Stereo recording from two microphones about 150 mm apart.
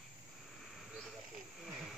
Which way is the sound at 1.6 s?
Centre (ahead or behind).